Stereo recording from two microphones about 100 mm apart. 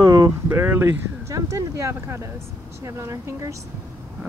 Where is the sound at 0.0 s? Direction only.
35° right (ahead or behind).